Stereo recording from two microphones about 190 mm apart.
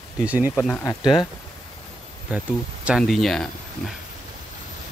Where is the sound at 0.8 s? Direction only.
20° left (ahead or behind).